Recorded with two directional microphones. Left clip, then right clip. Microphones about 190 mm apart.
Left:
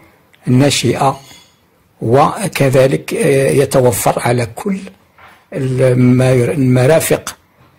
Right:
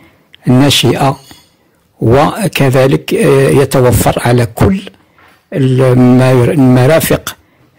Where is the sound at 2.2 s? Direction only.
45° right (ahead or behind).